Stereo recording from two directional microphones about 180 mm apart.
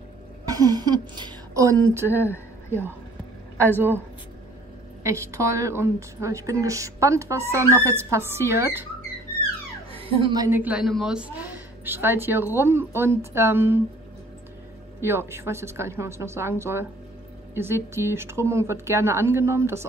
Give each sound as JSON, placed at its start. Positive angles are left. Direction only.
{"t": 0.5, "sound": "a woman's voice", "side_deg": -20}
{"t": 3.7, "sound": "a woman's voice", "side_deg": -10}
{"t": 5.0, "sound": "a woman's voice", "side_deg": -15}
{"t": 9.9, "sound": "a woman's voice", "side_deg": -30}
{"t": 15.0, "sound": "a woman's voice", "side_deg": -15}